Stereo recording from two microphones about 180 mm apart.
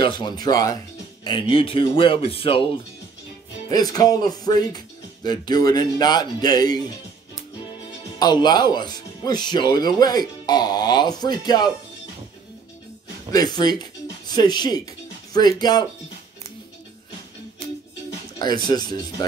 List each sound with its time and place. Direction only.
0.0 s speech: 25° left (ahead or behind)
8.2 s speech: 25° left (ahead or behind)
13.3 s speech: 20° left (ahead or behind)
18.4 s speech: 25° left (ahead or behind)